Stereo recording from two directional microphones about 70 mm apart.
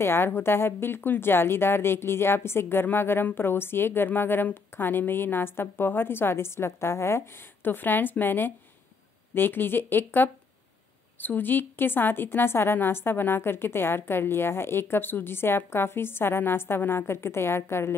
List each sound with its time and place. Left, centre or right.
0.0 s a woman's voice: left